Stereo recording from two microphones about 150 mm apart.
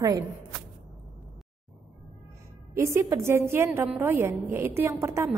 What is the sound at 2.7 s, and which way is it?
A woman's voice, 20° right (ahead or behind).